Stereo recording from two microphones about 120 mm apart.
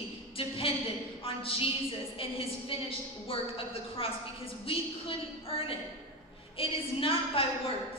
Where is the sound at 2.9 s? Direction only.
50° left (ahead or behind).